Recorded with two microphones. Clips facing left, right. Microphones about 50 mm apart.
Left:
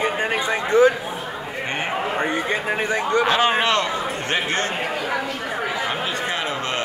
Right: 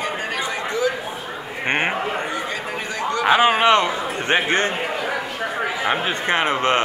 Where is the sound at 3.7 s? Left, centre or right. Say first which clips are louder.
Right 3 dB; right.